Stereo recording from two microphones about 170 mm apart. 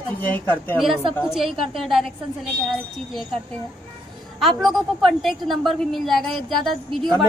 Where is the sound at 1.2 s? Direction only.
Centre (ahead or behind).